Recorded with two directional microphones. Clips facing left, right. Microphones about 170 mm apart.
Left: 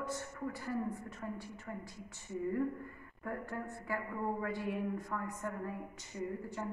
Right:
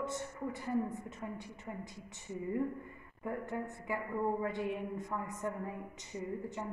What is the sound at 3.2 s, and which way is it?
A woman's voice, 20° right (ahead or behind).